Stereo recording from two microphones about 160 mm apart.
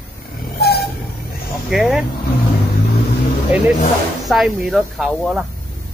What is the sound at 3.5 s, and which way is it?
Speech, 10° right (ahead or behind).